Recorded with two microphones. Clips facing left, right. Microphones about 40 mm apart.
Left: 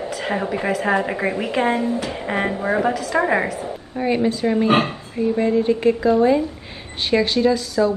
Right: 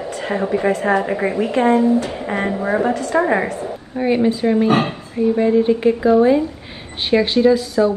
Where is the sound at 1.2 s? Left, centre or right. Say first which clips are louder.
Right 4 dB; left.